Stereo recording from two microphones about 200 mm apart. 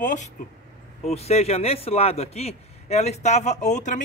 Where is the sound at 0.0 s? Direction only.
40° left (ahead or behind).